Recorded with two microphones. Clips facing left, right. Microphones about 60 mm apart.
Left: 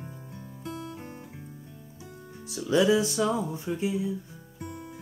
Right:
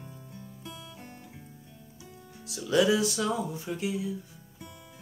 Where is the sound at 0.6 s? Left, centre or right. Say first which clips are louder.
Left 10 dB; left.